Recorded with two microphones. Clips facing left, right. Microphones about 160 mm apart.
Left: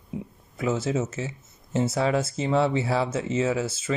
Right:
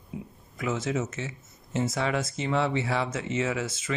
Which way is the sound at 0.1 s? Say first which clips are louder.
Left 4 dB; 30° left (ahead or behind).